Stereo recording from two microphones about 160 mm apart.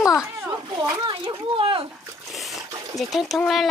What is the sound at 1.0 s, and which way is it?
Speech, 30° right (ahead or behind).